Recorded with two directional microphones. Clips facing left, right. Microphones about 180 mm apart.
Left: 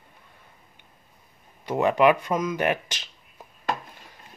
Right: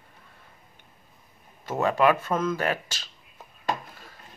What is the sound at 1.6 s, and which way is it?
Speech, 15° left (ahead or behind).